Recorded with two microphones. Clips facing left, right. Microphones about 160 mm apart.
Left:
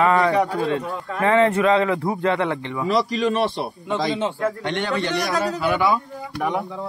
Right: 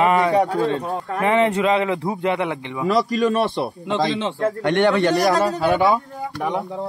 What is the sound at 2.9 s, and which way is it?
A man's voice, 50° right (ahead or behind).